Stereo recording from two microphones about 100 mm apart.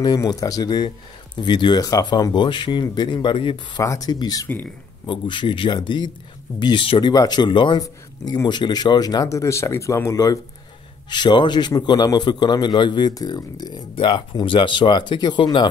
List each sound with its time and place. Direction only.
0.0 s speech: 40° left (ahead or behind)
3.8 s speech: 35° left (ahead or behind)
5.0 s speech: 55° left (ahead or behind)
7.8 s speech: 40° left (ahead or behind)
11.1 s speech: 50° left (ahead or behind)